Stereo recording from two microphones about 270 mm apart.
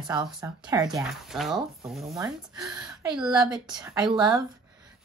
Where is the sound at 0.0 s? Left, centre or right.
Centre.